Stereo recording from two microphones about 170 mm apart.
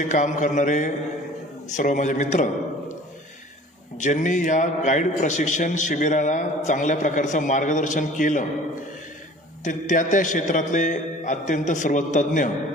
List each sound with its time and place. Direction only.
0.0 s a man's voice: 45° left (ahead or behind)
4.0 s a man's voice: 45° left (ahead or behind)
9.7 s a man's voice: 50° left (ahead or behind)